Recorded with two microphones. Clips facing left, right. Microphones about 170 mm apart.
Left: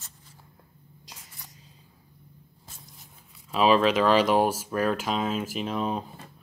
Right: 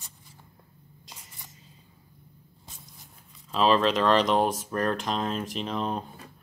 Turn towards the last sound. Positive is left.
turn(degrees=5)  # may be behind; listen again after turning